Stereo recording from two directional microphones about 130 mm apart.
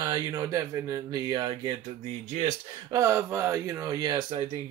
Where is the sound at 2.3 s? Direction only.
55° right (ahead or behind).